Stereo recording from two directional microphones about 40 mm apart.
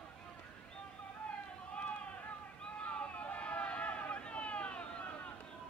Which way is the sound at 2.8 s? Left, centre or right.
Left.